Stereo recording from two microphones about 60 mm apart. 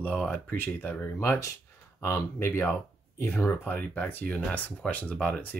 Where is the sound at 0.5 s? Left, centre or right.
Left.